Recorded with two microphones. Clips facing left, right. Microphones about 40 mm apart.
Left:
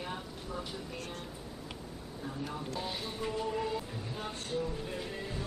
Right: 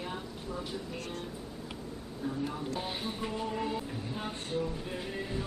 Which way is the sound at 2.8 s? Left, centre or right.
Right.